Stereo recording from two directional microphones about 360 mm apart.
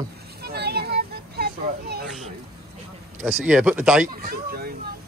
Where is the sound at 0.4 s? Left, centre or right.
Right.